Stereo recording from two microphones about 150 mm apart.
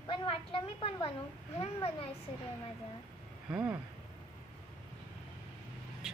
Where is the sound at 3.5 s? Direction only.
5° right (ahead or behind).